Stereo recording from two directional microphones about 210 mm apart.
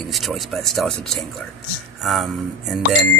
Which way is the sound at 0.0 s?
Centre (ahead or behind).